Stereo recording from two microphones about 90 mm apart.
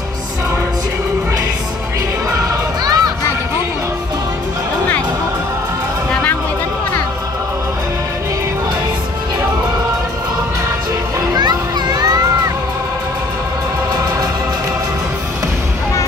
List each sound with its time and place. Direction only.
2.3 s music: 45° right (ahead or behind)
11.1 s children playing: 50° right (ahead or behind)